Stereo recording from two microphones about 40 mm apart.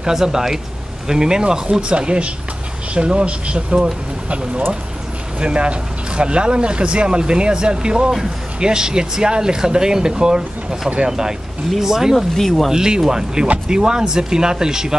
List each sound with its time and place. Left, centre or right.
0.0 s speech: centre
12.4 s speech: centre
12.7 s speech: centre